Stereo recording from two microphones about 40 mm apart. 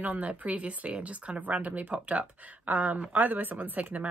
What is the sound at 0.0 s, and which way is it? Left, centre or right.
Speech, right.